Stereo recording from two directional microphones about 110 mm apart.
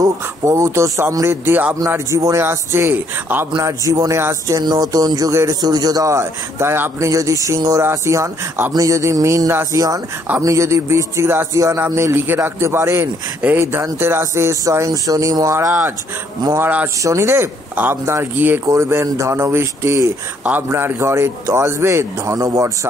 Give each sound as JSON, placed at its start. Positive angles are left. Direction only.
{"t": 0.0, "sound": "speech", "side_deg": -30}
{"t": 3.6, "sound": "speech", "side_deg": -30}
{"t": 4.6, "sound": "speech", "side_deg": -35}